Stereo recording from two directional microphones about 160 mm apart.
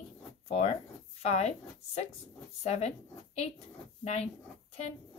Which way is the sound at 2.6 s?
45° left (ahead or behind).